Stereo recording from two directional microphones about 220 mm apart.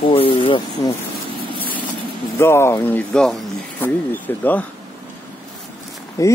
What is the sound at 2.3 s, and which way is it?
Speech, 10° left (ahead or behind).